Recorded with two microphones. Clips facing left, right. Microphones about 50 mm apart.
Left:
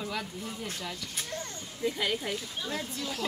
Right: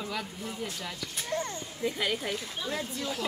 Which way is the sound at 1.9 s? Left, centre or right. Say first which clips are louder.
Even; centre.